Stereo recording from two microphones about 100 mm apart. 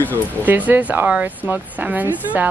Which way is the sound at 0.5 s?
15° right (ahead or behind).